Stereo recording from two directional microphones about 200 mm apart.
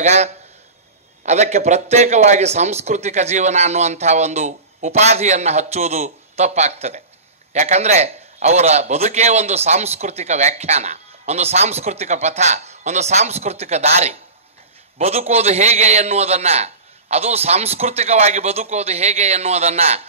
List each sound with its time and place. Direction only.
0.0 s a man's voice: 35° right (ahead or behind)